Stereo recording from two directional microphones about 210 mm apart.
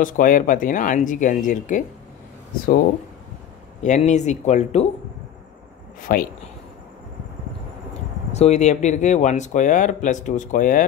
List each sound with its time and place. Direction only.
0.0 s speech: 40° left (ahead or behind)
3.8 s speech: 35° left (ahead or behind)
5.9 s speech: 40° left (ahead or behind)
8.3 s speech: 30° left (ahead or behind)